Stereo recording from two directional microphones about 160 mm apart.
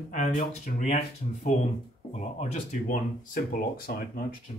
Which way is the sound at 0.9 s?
45° left (ahead or behind).